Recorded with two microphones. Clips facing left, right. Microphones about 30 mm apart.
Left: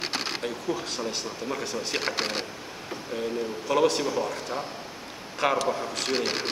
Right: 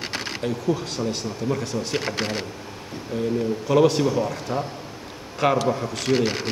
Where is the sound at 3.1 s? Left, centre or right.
Centre.